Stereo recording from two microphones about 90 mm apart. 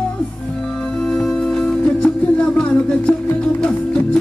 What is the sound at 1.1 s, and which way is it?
Music, 5° left (ahead or behind).